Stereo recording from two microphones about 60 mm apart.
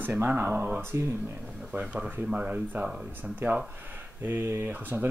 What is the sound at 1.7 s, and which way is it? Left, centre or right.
Speech, right.